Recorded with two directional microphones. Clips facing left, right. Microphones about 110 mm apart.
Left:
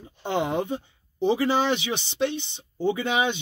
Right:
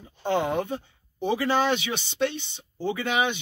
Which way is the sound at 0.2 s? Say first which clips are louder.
Right 1 dB; 20° left (ahead or behind).